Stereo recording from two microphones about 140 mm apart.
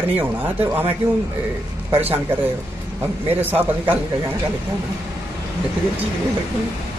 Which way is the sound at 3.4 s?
15° right (ahead or behind).